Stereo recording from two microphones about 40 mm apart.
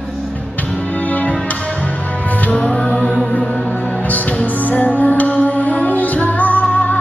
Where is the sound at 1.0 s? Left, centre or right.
Left.